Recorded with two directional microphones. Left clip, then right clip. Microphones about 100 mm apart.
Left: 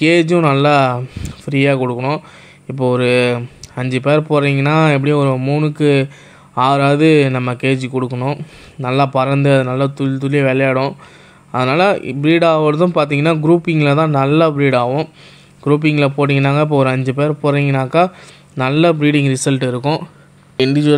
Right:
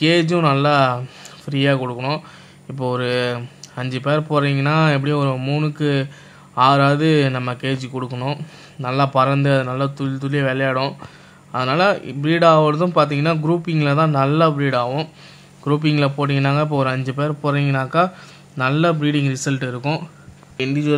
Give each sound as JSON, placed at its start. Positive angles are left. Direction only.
{"t": 0.0, "sound": "a man's voice", "side_deg": 40}
{"t": 0.4, "sound": "speech", "side_deg": 30}
{"t": 0.7, "sound": "a man's voice", "side_deg": 40}
{"t": 2.0, "sound": "speech", "side_deg": 25}
{"t": 2.8, "sound": "a man's voice", "side_deg": 40}
{"t": 5.3, "sound": "speech", "side_deg": 25}
{"t": 5.8, "sound": "a man's voice", "side_deg": 45}
{"t": 8.1, "sound": "speech", "side_deg": 25}
{"t": 8.8, "sound": "a man's voice", "side_deg": 40}
{"t": 20.5, "sound": "speech", "side_deg": 65}